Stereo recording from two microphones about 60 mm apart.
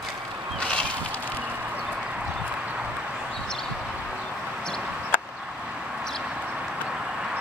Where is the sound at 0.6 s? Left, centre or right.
Centre.